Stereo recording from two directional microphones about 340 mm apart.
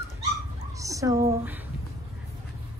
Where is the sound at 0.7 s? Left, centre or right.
Centre.